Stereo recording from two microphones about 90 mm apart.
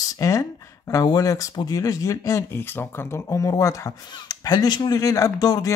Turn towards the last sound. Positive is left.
turn(degrees=45)  # may be behind; listen again after turning